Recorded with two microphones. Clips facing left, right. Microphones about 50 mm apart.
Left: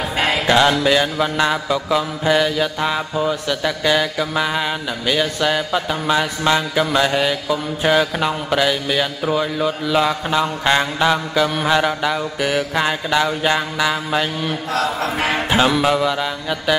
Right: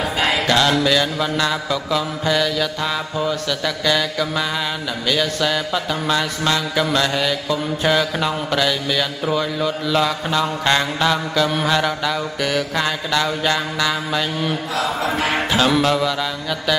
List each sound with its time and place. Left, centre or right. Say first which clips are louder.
0.5 s mantra: left 4 dB; left
15.8 s mantra: left 1 dB; centre